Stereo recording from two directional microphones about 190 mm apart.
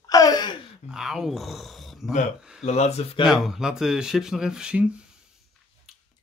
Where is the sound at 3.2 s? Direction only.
Centre (ahead or behind).